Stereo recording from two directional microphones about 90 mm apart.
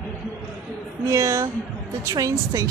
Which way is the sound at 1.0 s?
35° right (ahead or behind).